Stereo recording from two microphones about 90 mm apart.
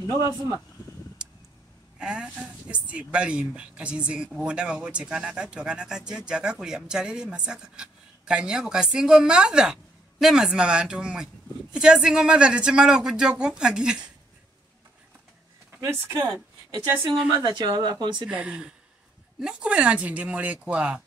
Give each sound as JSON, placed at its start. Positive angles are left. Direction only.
{"t": 1.2, "sound": "a sound", "side_deg": -10}
{"t": 2.0, "sound": "speech", "side_deg": -10}
{"t": 15.8, "sound": "speech", "side_deg": -35}
{"t": 17.3, "sound": "speech", "side_deg": -50}
{"t": 18.2, "sound": "speech", "side_deg": -10}